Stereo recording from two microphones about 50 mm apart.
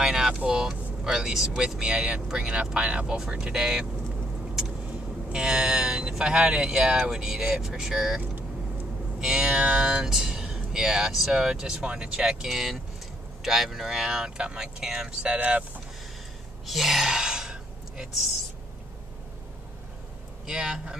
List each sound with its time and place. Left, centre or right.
0.0 s vehicle: centre
0.5 s speech: centre
5.3 s speech: centre
8.2 s vehicle: right
9.2 s music: centre
9.8 s speech: centre
16.6 s gasp: centre
20.4 s speech: centre